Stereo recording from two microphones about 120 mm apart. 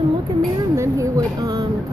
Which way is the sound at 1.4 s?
35° right (ahead or behind).